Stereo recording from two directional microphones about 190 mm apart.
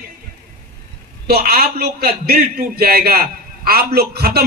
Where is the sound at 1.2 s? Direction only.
55° right (ahead or behind).